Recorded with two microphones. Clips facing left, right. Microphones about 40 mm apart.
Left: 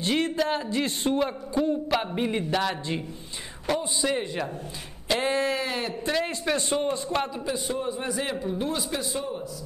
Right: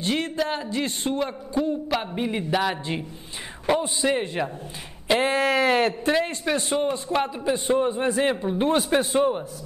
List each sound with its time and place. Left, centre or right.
0.0 s speech: centre
2.5 s a man's voice: centre
3.6 s a man's voice: right
5.0 s a sound: right
5.4 s a sound: right
5.7 s speech: right
6.2 s a man's voice: centre
7.3 s a man's voice: right
8.6 s speech: right